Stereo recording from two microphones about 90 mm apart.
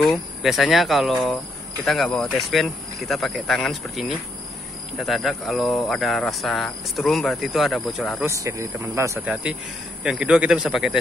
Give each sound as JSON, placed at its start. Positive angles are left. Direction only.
{"t": 0.0, "sound": "speech", "side_deg": 0}
{"t": 8.3, "sound": "speech", "side_deg": -35}
{"t": 9.2, "sound": "speech", "side_deg": -10}